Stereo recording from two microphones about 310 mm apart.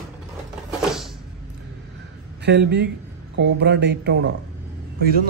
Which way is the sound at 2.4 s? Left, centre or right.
Right.